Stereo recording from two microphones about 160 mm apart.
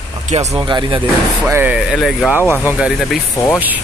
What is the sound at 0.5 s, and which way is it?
Speech, 30° right (ahead or behind).